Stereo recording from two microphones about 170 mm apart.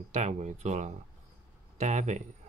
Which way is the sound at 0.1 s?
40° right (ahead or behind).